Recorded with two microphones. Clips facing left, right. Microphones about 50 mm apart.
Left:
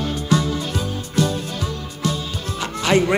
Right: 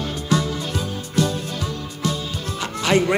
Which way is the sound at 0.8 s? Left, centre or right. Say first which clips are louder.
Right 1 dB; left.